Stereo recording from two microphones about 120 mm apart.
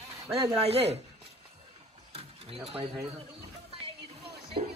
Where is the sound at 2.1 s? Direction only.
55° right (ahead or behind).